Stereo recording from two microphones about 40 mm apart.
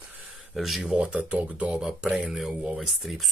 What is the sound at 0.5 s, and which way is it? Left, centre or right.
Speech, centre.